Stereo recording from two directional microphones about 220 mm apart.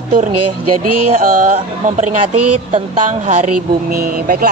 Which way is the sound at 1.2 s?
40° right (ahead or behind).